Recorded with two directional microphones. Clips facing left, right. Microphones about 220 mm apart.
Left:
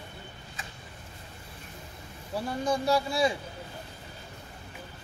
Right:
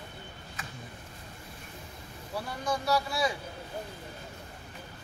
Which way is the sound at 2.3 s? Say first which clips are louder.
Left 4 dB; 25° left (ahead or behind).